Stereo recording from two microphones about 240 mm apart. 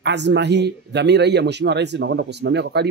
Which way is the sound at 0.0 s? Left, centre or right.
Right.